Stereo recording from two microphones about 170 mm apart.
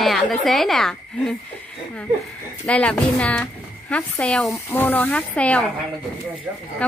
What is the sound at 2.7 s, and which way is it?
A woman's voice, 5° left (ahead or behind).